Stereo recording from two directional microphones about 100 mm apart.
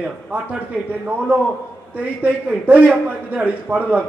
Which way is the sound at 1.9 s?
15° right (ahead or behind).